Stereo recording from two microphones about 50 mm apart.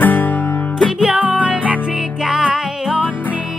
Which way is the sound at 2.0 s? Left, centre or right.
Centre.